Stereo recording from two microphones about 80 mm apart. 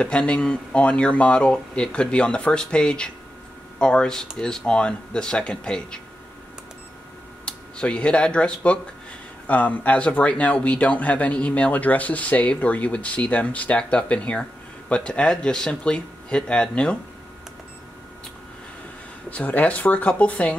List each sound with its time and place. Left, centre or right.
0.0 s a man's voice: centre
7.4 s a man's voice: centre
19.3 s a man's voice: centre